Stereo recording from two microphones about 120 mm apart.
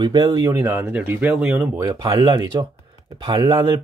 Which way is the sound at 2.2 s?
40° right (ahead or behind).